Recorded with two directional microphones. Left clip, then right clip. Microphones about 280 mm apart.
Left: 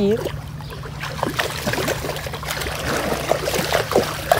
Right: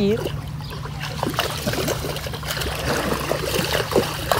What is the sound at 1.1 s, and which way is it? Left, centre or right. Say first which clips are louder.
Boat: left 1 dB; centre.